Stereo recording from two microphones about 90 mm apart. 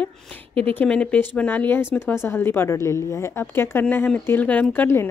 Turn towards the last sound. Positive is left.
turn(degrees=15)  # may be behind; listen again after turning